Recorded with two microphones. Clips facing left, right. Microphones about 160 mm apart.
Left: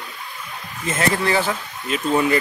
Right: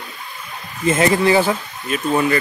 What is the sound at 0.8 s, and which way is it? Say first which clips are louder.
Speech: right 6 dB; 10° right (ahead or behind).